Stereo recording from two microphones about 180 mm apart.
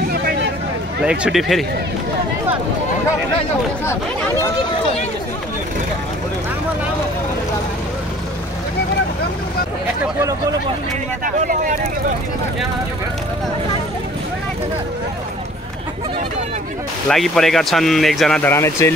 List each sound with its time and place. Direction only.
0.1 s vehicle: 65° right (ahead or behind)
1.0 s speech: 5° right (ahead or behind)
3.8 s speech: 15° left (ahead or behind)
11.3 s speech: 45° right (ahead or behind)
17.1 s speech: centre (ahead or behind)
18.5 s speech: 15° left (ahead or behind)